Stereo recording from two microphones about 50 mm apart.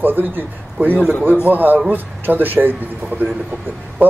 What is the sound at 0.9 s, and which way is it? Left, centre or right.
Speech, left.